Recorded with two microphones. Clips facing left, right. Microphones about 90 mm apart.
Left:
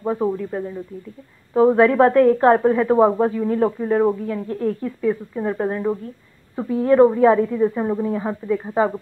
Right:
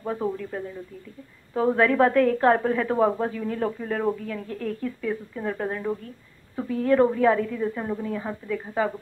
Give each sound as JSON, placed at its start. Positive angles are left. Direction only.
{"t": 0.0, "sound": "a woman's voice", "side_deg": 20}